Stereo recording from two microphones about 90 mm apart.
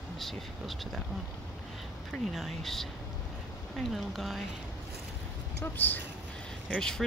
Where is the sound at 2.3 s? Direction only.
Centre (ahead or behind).